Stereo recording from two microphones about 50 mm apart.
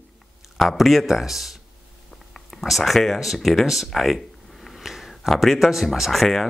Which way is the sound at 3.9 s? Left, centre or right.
Centre.